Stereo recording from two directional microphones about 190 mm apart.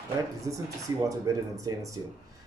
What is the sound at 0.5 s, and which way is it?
Speech, 15° right (ahead or behind).